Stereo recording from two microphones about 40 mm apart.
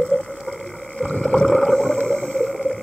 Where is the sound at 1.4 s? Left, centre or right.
Centre.